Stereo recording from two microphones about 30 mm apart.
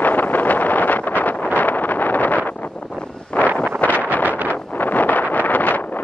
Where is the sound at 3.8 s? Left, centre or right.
Left.